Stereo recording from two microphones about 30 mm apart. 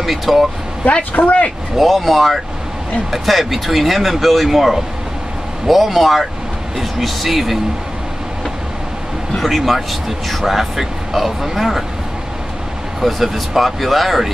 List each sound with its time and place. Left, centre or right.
0.0 s speech: centre
1.1 s speech: left
1.8 s speech: centre
9.4 s speech: centre
13.0 s speech: centre